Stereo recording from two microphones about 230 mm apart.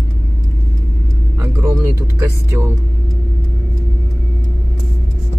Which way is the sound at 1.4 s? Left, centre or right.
Centre.